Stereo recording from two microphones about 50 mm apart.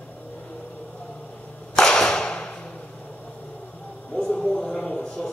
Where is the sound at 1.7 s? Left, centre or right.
Centre.